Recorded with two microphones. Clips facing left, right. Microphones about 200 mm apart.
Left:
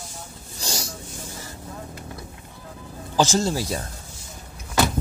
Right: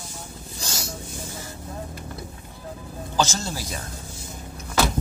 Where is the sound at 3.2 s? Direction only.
30° left (ahead or behind).